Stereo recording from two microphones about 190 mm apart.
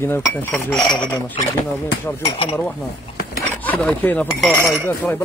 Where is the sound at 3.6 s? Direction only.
10° left (ahead or behind).